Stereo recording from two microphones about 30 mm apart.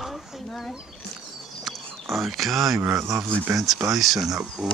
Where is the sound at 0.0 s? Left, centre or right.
Centre.